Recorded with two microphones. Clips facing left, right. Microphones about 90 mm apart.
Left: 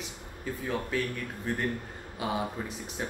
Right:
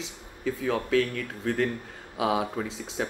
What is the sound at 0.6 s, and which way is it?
Speech, 90° right.